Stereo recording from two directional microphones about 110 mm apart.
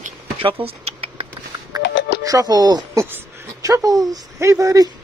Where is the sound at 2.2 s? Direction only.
35° right (ahead or behind).